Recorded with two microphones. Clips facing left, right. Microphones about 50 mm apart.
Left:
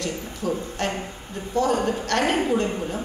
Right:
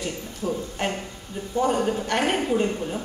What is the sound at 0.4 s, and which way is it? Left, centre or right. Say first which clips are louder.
Speech: left 1 dB; left.